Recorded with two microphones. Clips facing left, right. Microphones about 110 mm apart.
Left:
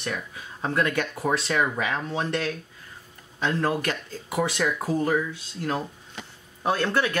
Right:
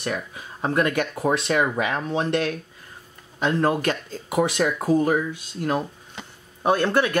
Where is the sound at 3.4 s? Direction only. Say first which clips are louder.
Right 4 dB; 20° right (ahead or behind).